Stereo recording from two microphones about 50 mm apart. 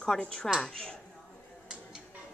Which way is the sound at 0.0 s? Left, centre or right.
Centre.